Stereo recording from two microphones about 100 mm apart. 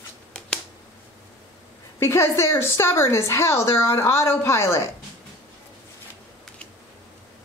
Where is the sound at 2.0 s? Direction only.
25° left (ahead or behind).